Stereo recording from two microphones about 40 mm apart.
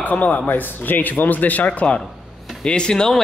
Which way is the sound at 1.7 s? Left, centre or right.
Left.